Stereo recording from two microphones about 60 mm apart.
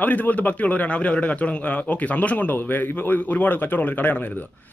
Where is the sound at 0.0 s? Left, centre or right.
Left.